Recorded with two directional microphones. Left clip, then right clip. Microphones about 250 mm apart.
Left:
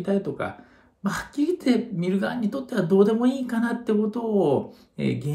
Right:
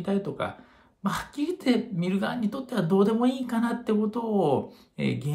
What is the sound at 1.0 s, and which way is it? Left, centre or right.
Speech, centre.